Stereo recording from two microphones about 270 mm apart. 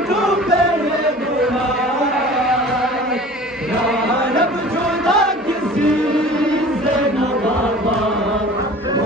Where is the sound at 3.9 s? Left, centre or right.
Centre.